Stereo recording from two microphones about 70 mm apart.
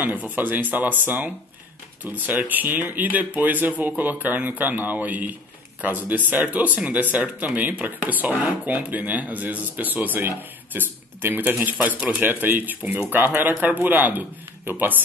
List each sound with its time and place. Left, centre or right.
0.0 s speech: right